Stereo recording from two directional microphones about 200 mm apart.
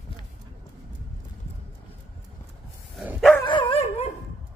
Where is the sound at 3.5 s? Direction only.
25° left (ahead or behind).